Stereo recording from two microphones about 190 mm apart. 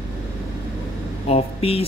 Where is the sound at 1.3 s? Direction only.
30° left (ahead or behind).